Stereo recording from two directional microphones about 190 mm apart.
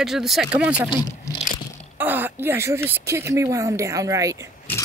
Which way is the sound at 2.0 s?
10° right (ahead or behind).